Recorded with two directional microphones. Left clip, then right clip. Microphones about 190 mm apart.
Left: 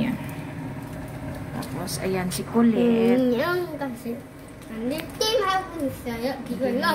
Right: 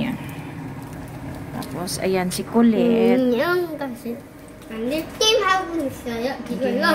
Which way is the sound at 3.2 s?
15° right (ahead or behind).